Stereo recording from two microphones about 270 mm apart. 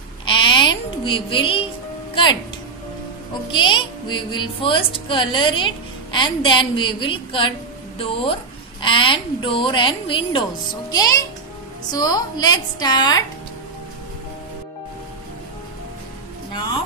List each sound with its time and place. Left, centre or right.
0.2 s sheep: centre
3.5 s a woman's voice: centre